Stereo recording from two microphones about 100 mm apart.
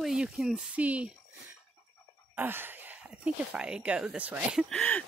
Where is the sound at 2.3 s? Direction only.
20° right (ahead or behind).